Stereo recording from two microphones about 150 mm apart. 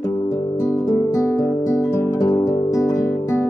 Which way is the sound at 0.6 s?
25° left (ahead or behind).